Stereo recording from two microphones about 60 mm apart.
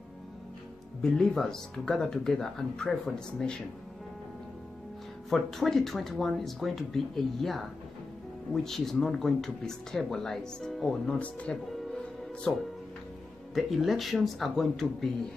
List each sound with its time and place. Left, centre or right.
1.0 s speech: centre
5.3 s speech: centre
8.6 s speech: centre
11.1 s speech: left
13.6 s speech: centre